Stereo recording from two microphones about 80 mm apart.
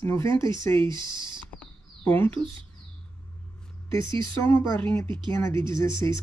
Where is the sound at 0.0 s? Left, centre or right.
Left.